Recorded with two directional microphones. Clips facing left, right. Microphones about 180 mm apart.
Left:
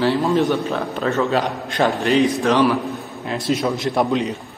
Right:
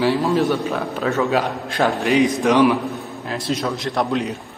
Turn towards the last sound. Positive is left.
turn(degrees=0)  # may be behind; listen again after turning